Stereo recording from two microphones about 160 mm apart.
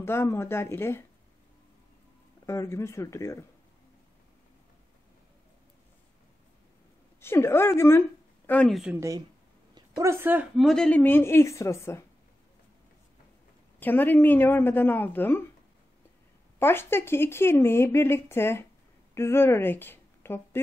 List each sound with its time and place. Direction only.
0.0 s speech: 15° left (ahead or behind)
2.4 s speech: 20° left (ahead or behind)
7.2 s speech: 15° left (ahead or behind)
8.9 s speech: 20° right (ahead or behind)
9.8 s a sound: 25° right (ahead or behind)
10.1 s speech: 10° right (ahead or behind)
10.5 s speech: centre (ahead or behind); by 12.0 s 20° left (ahead or behind)
13.7 s speech: 10° left (ahead or behind)
16.5 s a woman's voice: 15° left (ahead or behind)